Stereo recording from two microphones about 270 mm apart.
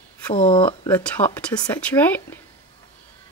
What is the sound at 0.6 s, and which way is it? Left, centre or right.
Speech, centre.